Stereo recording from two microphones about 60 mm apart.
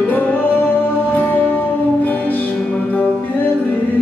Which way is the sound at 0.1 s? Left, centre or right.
Left.